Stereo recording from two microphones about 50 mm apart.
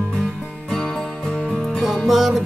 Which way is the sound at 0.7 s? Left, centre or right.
Centre.